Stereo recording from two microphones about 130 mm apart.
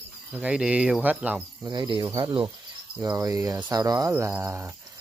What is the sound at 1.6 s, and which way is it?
Speech, 35° right (ahead or behind).